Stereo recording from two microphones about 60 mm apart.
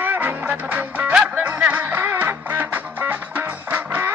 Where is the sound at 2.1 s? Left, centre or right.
Right.